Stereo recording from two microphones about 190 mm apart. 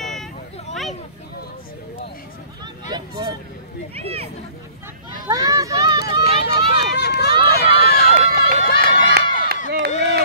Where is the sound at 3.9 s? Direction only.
30° right (ahead or behind).